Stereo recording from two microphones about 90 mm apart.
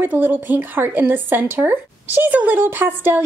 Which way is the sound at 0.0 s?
20° right (ahead or behind).